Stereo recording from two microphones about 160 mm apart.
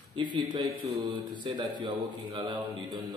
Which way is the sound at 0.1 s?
30° right (ahead or behind).